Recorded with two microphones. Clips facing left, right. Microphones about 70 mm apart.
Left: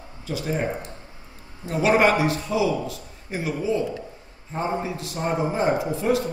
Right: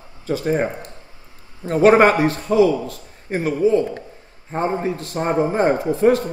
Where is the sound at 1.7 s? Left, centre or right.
Right.